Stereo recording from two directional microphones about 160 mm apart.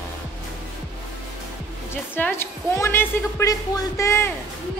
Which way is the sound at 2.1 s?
15° left (ahead or behind).